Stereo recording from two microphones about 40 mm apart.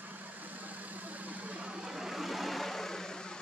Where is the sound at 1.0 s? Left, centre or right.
Right.